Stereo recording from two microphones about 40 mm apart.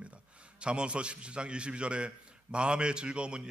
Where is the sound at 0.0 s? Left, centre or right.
Right.